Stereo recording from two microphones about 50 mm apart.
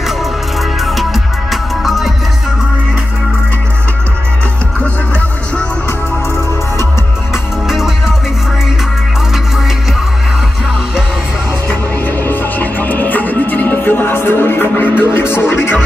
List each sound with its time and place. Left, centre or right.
0.7 s music: centre
7.6 s music: centre
12.2 s music: left